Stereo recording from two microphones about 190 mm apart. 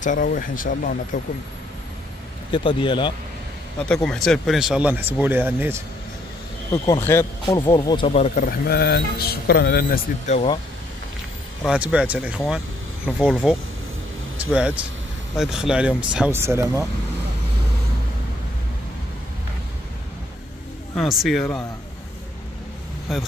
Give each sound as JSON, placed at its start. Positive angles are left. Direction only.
{"t": 0.0, "sound": "a man's voice", "side_deg": 45}
{"t": 2.5, "sound": "speech", "side_deg": 25}
{"t": 3.9, "sound": "speech", "side_deg": 5}
{"t": 6.7, "sound": "speech", "side_deg": 15}
{"t": 7.4, "sound": "speech", "side_deg": 25}
{"t": 8.5, "sound": "a man's voice", "side_deg": 55}
{"t": 11.6, "sound": "speech", "side_deg": -5}
{"t": 14.4, "sound": "speech", "side_deg": -5}
{"t": 20.9, "sound": "speech", "side_deg": 0}